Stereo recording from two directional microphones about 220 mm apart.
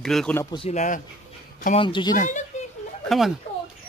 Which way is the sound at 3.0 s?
Centre (ahead or behind).